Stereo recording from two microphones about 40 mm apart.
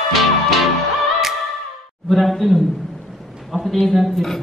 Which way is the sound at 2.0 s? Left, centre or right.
Centre.